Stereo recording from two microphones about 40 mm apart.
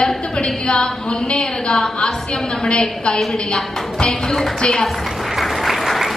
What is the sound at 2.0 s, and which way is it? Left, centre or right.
A woman's voice, centre.